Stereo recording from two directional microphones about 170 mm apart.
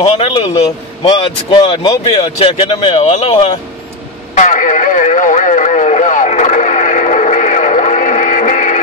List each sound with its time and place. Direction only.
0.0 s speech: 35° left (ahead or behind)
4.4 s radio: 50° left (ahead or behind)